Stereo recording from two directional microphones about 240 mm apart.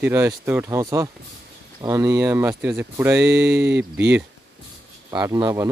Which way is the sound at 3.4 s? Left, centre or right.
Right.